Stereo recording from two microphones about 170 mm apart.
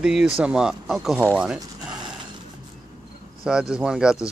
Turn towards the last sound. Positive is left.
turn(degrees=-5)  # may be behind; listen again after turning